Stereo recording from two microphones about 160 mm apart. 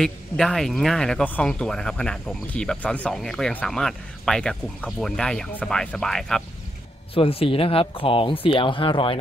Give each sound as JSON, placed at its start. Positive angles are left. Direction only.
{"t": 0.0, "sound": "speech", "side_deg": 5}
{"t": 7.2, "sound": "speech", "side_deg": 35}